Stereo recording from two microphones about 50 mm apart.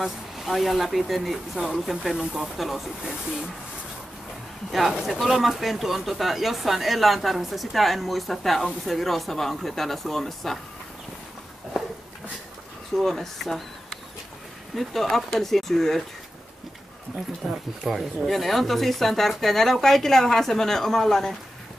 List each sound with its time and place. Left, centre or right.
0.5 s speech: centre
4.6 s speech: centre
12.9 s speech: centre
17.4 s speech: centre